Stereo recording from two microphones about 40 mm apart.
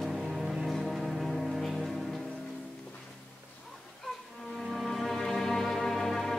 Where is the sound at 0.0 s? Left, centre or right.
Centre.